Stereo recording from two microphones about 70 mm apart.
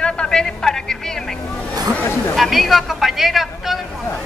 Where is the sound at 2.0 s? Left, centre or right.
Left.